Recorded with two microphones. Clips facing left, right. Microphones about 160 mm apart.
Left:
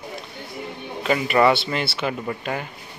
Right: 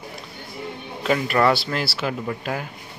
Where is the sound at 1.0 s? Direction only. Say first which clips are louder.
Left 1 dB; 5° left (ahead or behind).